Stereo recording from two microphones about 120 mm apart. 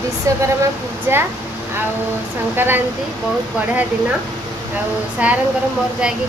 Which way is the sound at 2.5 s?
15° right (ahead or behind).